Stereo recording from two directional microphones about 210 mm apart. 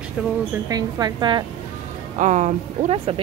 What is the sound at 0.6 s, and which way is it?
Speech, 20° right (ahead or behind).